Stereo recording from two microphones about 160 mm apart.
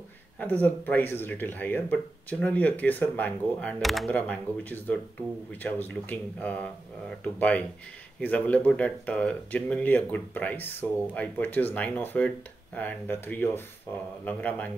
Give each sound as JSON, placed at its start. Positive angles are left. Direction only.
{"t": 0.4, "sound": "speech", "side_deg": 10}